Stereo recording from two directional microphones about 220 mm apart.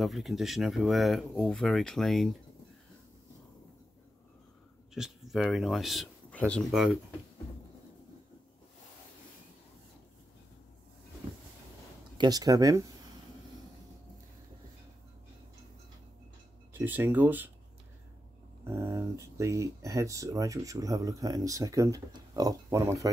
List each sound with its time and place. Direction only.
0.0 s speech: centre (ahead or behind)
4.9 s speech: centre (ahead or behind)
12.2 s speech: 15° right (ahead or behind)
16.7 s speech: 10° right (ahead or behind)
18.6 s speech: 10° right (ahead or behind)